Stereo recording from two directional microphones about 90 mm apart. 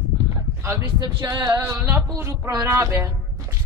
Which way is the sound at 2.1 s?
35° right (ahead or behind).